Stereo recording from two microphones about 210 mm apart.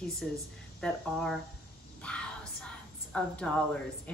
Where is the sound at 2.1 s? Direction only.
5° left (ahead or behind).